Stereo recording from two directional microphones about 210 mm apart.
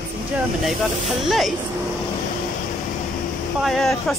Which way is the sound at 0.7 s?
Centre (ahead or behind).